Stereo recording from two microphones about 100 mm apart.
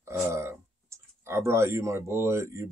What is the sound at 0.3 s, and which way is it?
Speech, 30° right (ahead or behind).